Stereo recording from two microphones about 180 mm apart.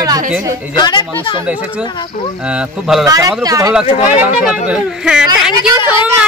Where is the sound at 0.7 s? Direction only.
25° left (ahead or behind).